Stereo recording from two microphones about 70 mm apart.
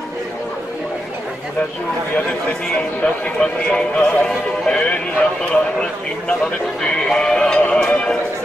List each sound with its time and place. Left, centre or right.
3.0 s speech: centre